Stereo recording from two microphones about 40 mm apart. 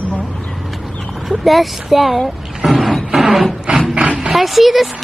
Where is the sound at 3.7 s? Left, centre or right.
Right.